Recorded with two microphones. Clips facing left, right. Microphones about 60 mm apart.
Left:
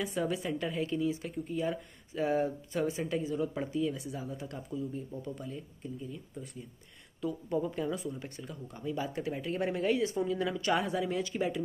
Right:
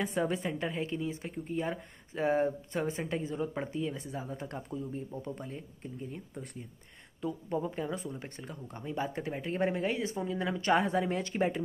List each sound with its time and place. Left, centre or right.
0.0 s speech: right
0.5 s speech: right
7.2 s speech: centre
7.9 s speech: right
10.6 s speech: right